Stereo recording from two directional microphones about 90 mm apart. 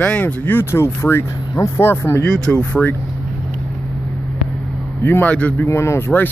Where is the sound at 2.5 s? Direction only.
10° left (ahead or behind).